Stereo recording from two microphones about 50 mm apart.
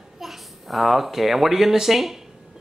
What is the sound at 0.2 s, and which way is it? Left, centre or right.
A child's voice, centre.